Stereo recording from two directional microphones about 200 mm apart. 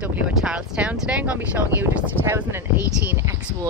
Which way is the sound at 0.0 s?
5° right (ahead or behind).